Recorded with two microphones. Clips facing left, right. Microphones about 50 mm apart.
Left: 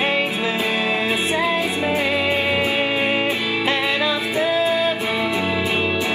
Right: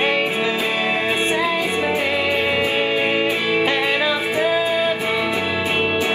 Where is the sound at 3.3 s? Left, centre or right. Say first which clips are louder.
Right 2 dB; right.